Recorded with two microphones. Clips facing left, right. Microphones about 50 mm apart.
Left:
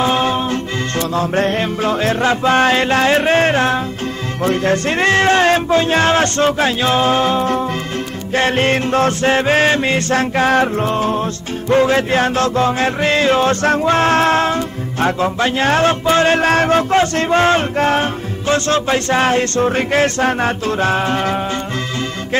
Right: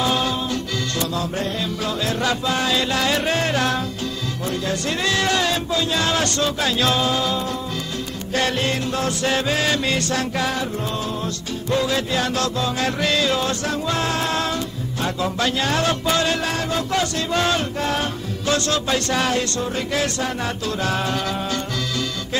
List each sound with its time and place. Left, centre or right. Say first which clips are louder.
0.0 s music: left 6 dB; left
4.5 s music: left 9 dB; left
15.2 s music: left 6 dB; left